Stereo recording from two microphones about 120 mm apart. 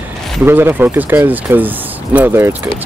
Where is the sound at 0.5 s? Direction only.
20° right (ahead or behind).